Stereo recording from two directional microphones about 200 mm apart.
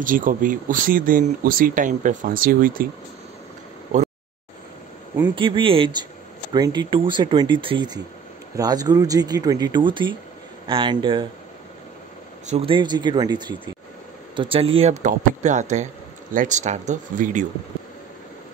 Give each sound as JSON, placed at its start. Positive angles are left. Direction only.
{"t": 0.0, "sound": "speech", "side_deg": -40}
{"t": 5.1, "sound": "speech", "side_deg": -20}
{"t": 12.4, "sound": "speech", "side_deg": -30}